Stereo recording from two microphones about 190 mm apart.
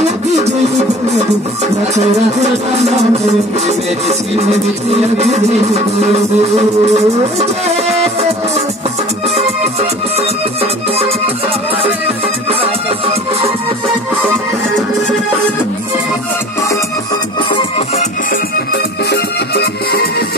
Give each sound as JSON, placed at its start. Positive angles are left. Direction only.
{"t": 0.0, "sound": "music", "side_deg": -35}
{"t": 9.3, "sound": "music", "side_deg": -35}
{"t": 12.4, "sound": "music", "side_deg": -30}
{"t": 17.5, "sound": "music", "side_deg": 30}
{"t": 19.0, "sound": "music", "side_deg": 60}